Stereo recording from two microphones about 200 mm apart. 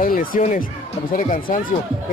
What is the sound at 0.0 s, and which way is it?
A man's voice, 45° left (ahead or behind).